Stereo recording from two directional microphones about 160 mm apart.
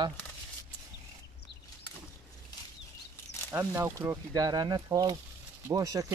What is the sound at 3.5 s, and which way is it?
Speech, 15° right (ahead or behind).